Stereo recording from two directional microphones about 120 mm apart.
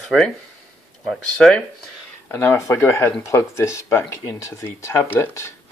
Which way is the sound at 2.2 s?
20° left (ahead or behind).